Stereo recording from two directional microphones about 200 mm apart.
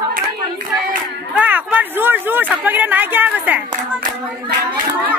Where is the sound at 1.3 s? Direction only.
10° right (ahead or behind).